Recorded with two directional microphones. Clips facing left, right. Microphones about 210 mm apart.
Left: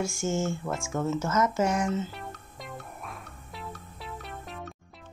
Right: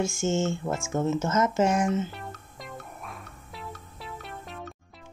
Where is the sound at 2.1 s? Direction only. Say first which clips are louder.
Even; centre (ahead or behind).